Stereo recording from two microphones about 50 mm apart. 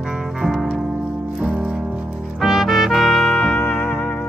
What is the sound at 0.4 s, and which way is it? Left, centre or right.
Music, centre.